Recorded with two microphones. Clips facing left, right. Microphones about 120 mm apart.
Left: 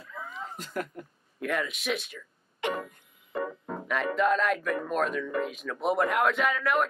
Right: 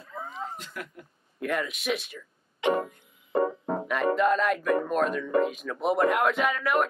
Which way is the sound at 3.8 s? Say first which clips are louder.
Right 2 dB; centre (ahead or behind).